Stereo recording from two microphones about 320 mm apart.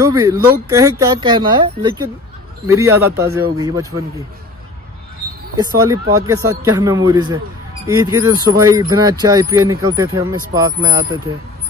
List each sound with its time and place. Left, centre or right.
0.0 s speech: centre
5.6 s speech: centre